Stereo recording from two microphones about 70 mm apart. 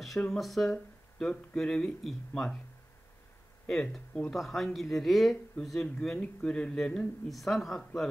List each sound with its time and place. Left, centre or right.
0.0 s speech: centre
3.6 s speech: centre
7.2 s speech: centre